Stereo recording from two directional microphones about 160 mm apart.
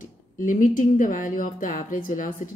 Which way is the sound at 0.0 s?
55° left (ahead or behind).